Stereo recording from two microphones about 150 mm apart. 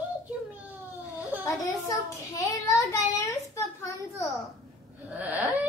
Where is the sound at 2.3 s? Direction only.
20° left (ahead or behind).